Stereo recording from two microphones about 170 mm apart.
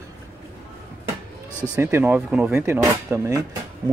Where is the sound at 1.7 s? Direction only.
15° right (ahead or behind).